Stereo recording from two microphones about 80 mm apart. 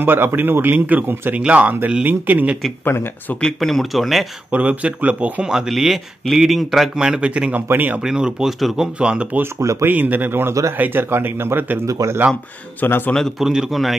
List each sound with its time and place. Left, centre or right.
0.0 s a man's voice: right
2.8 s speech: left
3.5 s speech: centre
4.5 s a man's voice: right
8.0 s speech: centre
9.0 s speech: centre
9.6 s speech: right
9.8 s a man's voice: right
11.8 s speech: right
12.8 s speech: left
13.4 s speech: centre